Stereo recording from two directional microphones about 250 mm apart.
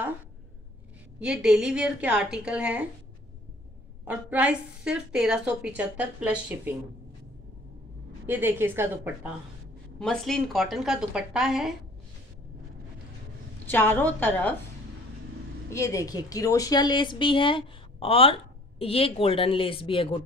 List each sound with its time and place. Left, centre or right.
1.2 s a woman's voice: centre
4.0 s a woman's voice: centre
8.3 s a woman's voice: centre
13.7 s a woman's voice: centre
15.7 s a woman's voice: centre